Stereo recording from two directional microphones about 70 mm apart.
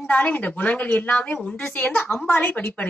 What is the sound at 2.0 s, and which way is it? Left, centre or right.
Speech, centre.